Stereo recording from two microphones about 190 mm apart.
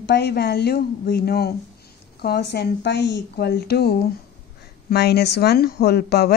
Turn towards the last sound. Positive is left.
turn(degrees=60)  # may be behind; listen again after turning